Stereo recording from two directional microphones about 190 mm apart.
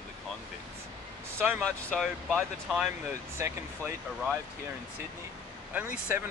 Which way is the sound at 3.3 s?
15° right (ahead or behind).